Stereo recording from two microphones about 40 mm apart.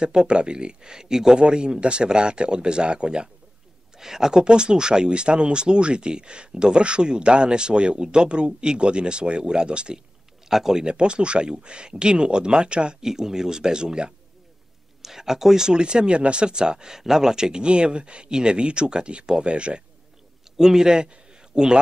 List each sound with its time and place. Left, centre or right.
0.0 s speech: right
4.0 s speech: centre
10.5 s speech: centre
13.0 s speech: centre
15.0 s speech: centre; by 19.8 s right
20.5 s a man's voice: centre